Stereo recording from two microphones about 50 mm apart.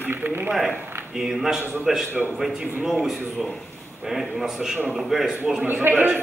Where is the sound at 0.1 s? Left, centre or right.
Right.